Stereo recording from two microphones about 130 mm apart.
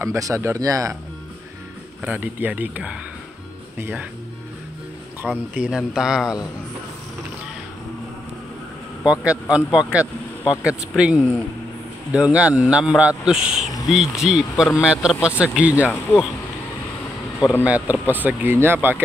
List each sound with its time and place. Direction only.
0.0 s speech: 25° right (ahead or behind)
2.0 s speech: 10° right (ahead or behind)
5.2 s speech: 5° left (ahead or behind)
9.0 s speech: 10° right (ahead or behind)
17.6 s speech: 10° right (ahead or behind)